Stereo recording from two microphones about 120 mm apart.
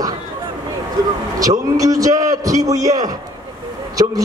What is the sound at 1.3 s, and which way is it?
A man's voice, 30° right (ahead or behind).